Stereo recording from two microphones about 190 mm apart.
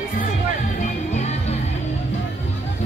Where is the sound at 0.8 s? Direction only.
35° left (ahead or behind).